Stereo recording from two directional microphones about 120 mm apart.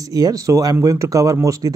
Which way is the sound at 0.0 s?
30° right (ahead or behind).